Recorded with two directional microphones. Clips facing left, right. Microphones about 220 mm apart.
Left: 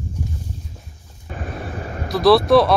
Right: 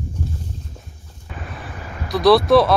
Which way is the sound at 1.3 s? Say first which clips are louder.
Left 5 dB; 45° left (ahead or behind).